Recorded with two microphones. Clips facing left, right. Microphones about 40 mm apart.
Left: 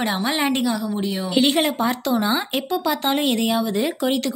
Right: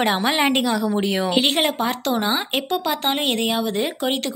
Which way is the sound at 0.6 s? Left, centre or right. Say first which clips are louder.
Right 2 dB; right.